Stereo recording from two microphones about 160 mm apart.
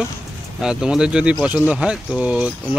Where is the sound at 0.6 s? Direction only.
5° right (ahead or behind).